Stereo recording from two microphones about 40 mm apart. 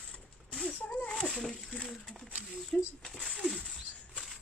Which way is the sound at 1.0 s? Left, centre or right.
Centre.